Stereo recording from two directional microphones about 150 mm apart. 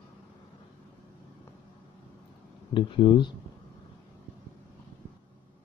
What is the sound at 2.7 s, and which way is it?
Speech, 35° left (ahead or behind).